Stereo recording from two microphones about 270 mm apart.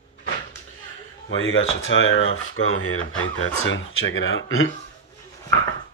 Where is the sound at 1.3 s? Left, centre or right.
Left.